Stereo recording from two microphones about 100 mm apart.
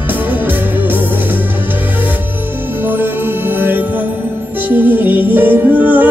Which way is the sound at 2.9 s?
20° right (ahead or behind).